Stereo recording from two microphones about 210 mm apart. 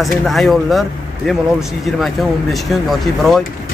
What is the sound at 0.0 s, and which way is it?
Speech, centre (ahead or behind).